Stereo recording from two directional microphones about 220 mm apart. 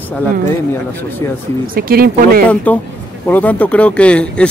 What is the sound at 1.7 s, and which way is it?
Speech, 45° right (ahead or behind).